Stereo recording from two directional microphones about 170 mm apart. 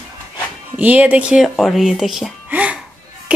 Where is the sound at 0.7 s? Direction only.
5° right (ahead or behind).